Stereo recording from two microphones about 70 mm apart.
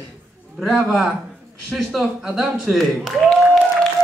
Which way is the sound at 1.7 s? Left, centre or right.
Centre.